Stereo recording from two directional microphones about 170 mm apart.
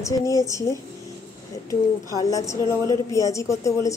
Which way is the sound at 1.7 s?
20° left (ahead or behind).